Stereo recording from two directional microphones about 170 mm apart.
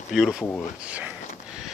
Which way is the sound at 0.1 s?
Centre (ahead or behind).